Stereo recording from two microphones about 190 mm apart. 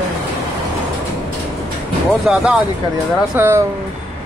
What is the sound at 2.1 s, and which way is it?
Speech, centre (ahead or behind).